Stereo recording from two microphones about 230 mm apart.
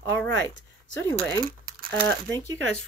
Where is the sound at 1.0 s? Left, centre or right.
Centre.